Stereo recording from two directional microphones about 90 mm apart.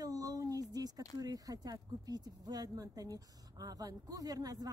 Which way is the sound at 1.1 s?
40° right (ahead or behind).